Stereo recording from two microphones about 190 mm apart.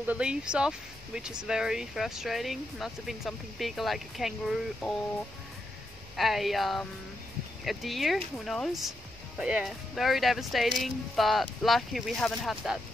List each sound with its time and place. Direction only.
0.0 s speech: 5° right (ahead or behind)
6.1 s speech: centre (ahead or behind)